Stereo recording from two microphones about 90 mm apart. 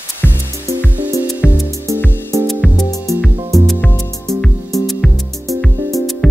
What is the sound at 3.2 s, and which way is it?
Music, 20° right (ahead or behind).